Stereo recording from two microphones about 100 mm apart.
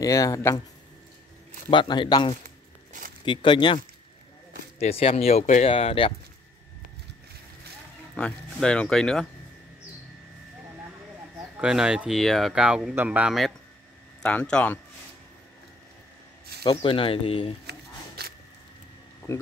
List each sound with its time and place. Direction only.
0.0 s speech: 35° left (ahead or behind)
1.7 s a man's voice: 55° left (ahead or behind)
4.7 s speech: 85° left; by 6.1 s 65° left (ahead or behind)
8.1 s speech: 10° left (ahead or behind)
11.6 s speech: 10° right (ahead or behind)
14.2 s speech: 10° left (ahead or behind)
16.7 s speech: 65° left (ahead or behind)
19.3 s speech: 25° left (ahead or behind)